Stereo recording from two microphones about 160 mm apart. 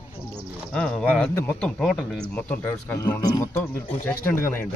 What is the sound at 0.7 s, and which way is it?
Speech, 5° left (ahead or behind).